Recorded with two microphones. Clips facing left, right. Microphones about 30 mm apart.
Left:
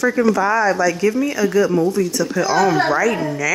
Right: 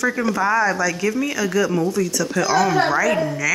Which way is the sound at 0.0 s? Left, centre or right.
Centre.